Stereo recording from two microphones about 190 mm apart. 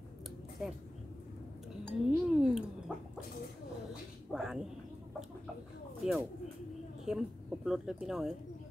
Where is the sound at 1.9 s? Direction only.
Centre (ahead or behind).